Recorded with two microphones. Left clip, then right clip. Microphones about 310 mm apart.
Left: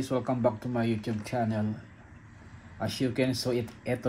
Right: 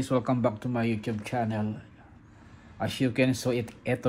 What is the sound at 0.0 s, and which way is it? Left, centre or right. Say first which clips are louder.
Speech: right 1 dB; right.